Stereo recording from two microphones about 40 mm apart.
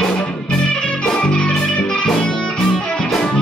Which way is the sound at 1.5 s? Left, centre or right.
Centre.